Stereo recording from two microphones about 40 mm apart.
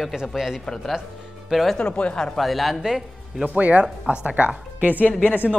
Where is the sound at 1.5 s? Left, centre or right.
Centre.